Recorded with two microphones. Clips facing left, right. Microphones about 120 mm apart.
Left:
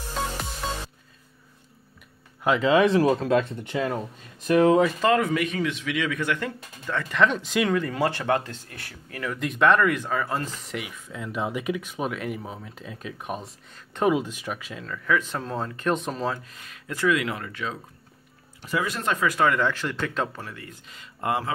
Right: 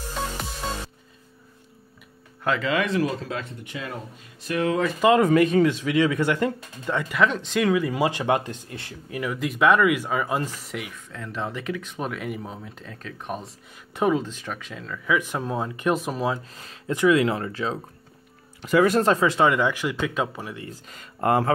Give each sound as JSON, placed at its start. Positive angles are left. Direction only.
{"t": 2.4, "sound": "speech", "side_deg": 15}
{"t": 2.7, "sound": "speech", "side_deg": 30}
{"t": 3.1, "sound": "speech", "side_deg": 55}
{"t": 4.5, "sound": "speech", "side_deg": 40}
{"t": 5.2, "sound": "speech", "side_deg": -40}
{"t": 6.9, "sound": "speech", "side_deg": -15}
{"t": 7.2, "sound": "speech", "side_deg": 0}
{"t": 9.4, "sound": "speech", "side_deg": -5}
{"t": 10.6, "sound": "speech", "side_deg": 0}
{"t": 15.0, "sound": "speech", "side_deg": -10}
{"t": 16.4, "sound": "speech", "side_deg": -30}
{"t": 18.6, "sound": "speech", "side_deg": -85}
{"t": 18.9, "sound": "speech", "side_deg": -35}
{"t": 20.8, "sound": "speech", "side_deg": -50}